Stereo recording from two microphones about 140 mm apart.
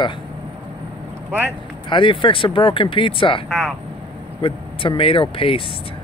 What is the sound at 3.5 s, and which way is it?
Speech, centre (ahead or behind).